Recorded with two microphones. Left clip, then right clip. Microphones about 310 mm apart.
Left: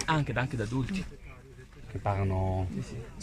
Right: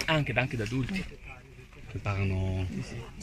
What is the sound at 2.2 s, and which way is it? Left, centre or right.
Speech, left.